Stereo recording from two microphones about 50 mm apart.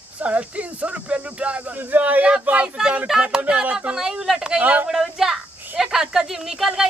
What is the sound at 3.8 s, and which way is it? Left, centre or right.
Speech, centre.